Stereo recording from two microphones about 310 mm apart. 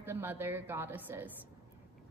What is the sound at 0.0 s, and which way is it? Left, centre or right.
A woman's voice, centre.